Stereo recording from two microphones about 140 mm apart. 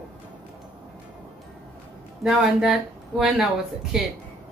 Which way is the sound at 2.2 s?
Centre (ahead or behind).